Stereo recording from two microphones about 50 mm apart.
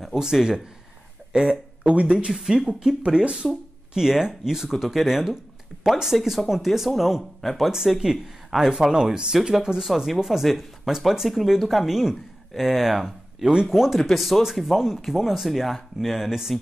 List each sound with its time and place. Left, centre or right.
0.0 s a man's voice: centre
1.3 s a sound: centre
1.9 s speech: right
2.3 s speech: centre